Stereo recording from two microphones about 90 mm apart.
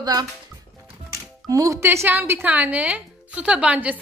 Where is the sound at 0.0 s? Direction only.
50° right (ahead or behind).